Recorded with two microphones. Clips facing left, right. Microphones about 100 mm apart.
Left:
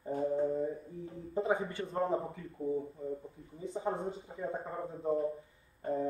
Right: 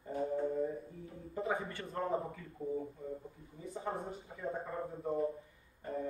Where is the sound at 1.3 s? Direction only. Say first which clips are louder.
Left 5 dB; 25° left (ahead or behind).